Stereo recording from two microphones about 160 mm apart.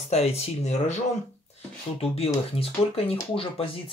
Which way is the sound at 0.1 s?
40° left (ahead or behind).